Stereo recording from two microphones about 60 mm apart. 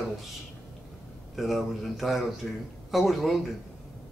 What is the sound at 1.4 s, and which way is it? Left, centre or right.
Speech, centre.